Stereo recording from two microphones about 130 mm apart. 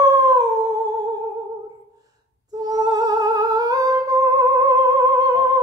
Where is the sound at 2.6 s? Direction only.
30° right (ahead or behind).